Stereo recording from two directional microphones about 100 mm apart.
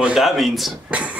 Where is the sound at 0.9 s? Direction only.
15° right (ahead or behind).